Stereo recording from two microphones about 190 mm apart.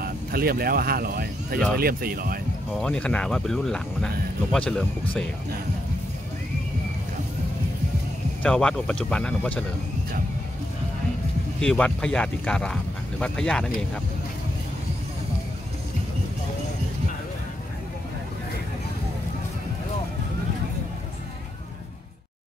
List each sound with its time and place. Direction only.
0.0 s speech: 50° right (ahead or behind)
2.8 s speech: 5° left (ahead or behind)
8.4 s speech: 5° left (ahead or behind)
11.6 s speech: 5° left (ahead or behind)